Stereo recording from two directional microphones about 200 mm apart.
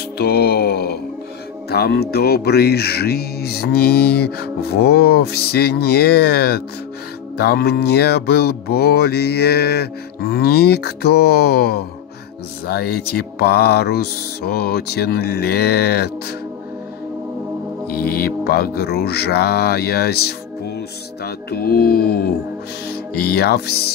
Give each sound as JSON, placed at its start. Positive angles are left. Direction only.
{"t": 0.2, "sound": "music", "side_deg": 55}
{"t": 1.7, "sound": "speech", "side_deg": 55}
{"t": 17.9, "sound": "speech", "side_deg": 50}
{"t": 22.8, "sound": "music", "side_deg": 50}